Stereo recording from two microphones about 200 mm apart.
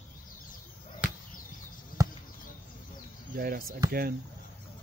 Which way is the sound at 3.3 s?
45° right (ahead or behind).